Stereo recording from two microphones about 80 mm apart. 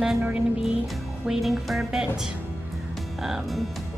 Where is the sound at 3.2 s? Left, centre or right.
Centre.